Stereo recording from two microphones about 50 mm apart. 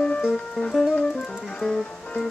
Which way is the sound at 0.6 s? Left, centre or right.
Centre.